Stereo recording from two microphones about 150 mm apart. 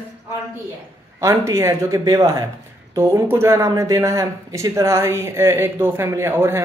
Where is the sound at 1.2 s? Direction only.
20° right (ahead or behind).